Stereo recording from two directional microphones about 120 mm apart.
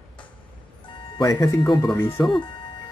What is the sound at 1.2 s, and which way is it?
Speech, 30° left (ahead or behind).